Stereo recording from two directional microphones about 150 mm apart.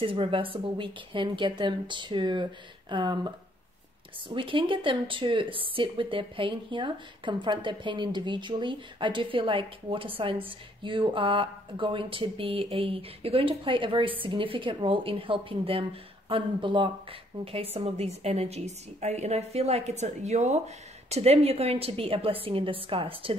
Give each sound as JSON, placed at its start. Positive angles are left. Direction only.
{"t": 0.0, "sound": "a woman's voice", "side_deg": -35}